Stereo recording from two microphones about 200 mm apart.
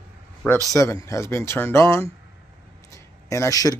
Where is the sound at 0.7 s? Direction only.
15° left (ahead or behind).